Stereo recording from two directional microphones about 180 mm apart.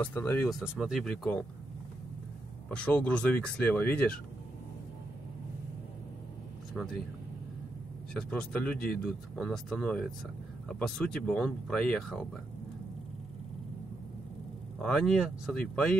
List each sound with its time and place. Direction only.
0.0 s speech: 10° left (ahead or behind)
0.5 s speech: centre (ahead or behind)
2.7 s speech: 5° left (ahead or behind)
6.7 s speech: centre (ahead or behind)
8.1 s speech: 5° left (ahead or behind)
14.8 s speech: 5° left (ahead or behind)